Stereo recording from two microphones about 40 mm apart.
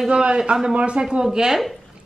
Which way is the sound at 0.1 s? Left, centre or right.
Right.